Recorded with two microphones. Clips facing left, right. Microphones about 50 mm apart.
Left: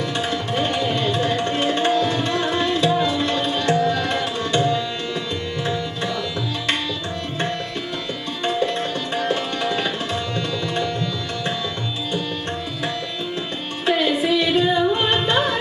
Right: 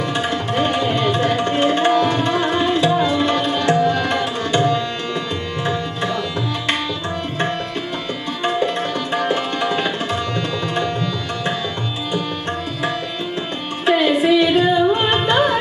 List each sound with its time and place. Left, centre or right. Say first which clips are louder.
0.2 s tabla: right 3 dB; centre
8.5 s tabla: right 2 dB; centre
13.8 s music: right 4 dB; centre